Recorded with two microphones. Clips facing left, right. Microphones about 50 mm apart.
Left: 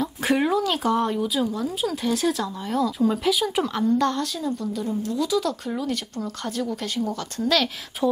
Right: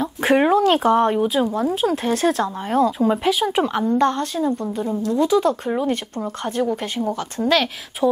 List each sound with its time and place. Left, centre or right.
0.0 s speech: right
8.0 s speech: centre